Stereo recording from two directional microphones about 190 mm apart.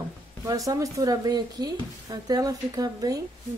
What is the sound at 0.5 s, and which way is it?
Speech, 15° right (ahead or behind).